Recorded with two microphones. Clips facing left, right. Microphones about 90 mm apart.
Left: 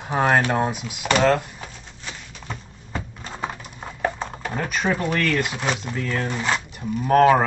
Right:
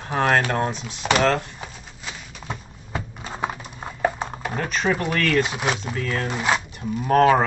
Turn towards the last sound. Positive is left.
turn(degrees=5)  # may be behind; listen again after turning